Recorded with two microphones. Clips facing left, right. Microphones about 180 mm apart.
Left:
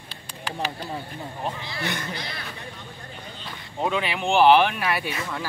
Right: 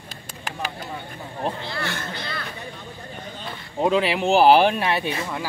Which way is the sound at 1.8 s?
20° left (ahead or behind).